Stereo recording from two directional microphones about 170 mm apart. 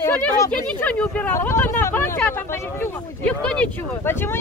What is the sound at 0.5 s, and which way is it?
Speech, 5° left (ahead or behind).